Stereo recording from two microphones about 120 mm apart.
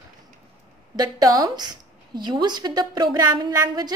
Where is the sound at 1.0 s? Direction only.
30° right (ahead or behind).